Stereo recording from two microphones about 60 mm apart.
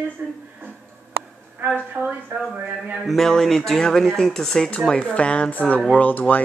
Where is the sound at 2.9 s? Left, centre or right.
Centre.